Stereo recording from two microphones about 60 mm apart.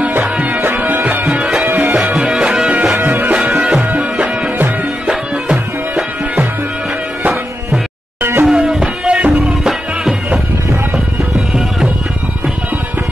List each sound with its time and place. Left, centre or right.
0.4 s music: right
2.1 s music: centre
3.0 s music: right
3.3 s music: centre
8.2 s music: right
8.5 s music: centre
9.7 s music: centre